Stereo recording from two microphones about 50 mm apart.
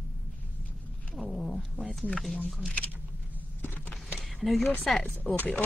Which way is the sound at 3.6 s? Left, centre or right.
Left.